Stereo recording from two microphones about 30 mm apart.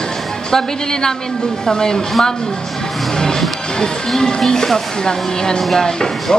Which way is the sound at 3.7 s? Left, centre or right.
Left.